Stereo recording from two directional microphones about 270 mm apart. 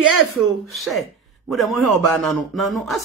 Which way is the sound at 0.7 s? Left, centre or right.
Centre.